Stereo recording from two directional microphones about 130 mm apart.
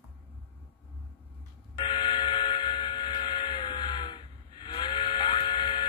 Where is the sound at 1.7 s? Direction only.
35° left (ahead or behind).